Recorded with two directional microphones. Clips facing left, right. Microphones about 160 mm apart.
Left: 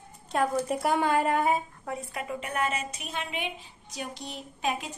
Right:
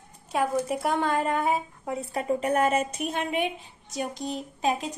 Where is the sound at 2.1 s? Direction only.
35° right (ahead or behind).